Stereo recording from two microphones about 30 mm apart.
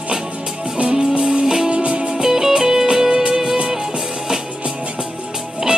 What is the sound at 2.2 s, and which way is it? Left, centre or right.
Music, centre.